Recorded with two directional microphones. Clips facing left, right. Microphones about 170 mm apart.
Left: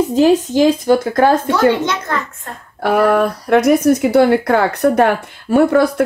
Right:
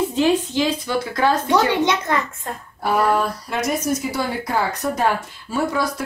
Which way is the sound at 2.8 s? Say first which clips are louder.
Left 6 dB; 65° left (ahead or behind).